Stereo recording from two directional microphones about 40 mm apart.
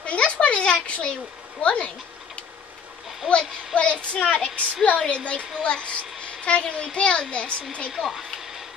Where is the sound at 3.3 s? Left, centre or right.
Left.